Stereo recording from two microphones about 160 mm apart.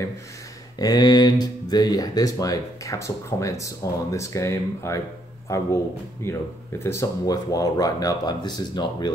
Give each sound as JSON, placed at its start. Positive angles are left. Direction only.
{"t": 0.7, "sound": "a man's voice", "side_deg": 25}